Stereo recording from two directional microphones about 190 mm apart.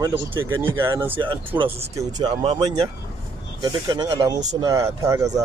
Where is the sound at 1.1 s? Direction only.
25° right (ahead or behind).